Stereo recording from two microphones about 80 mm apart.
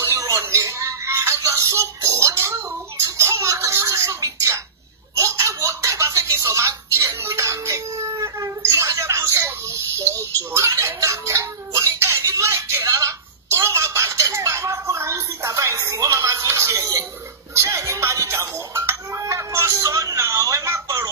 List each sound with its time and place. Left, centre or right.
0.0 s music: right
2.0 s a sound: right
17.6 s music: right